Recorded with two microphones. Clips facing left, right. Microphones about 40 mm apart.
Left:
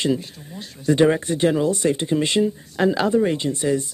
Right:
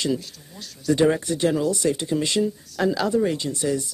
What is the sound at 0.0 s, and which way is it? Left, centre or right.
Speech, left.